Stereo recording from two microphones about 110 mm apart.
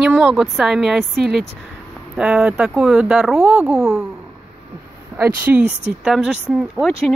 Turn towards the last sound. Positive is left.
turn(degrees=-5)  # may be behind; listen again after turning